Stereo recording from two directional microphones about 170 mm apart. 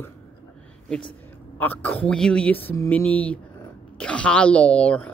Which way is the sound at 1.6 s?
10° left (ahead or behind).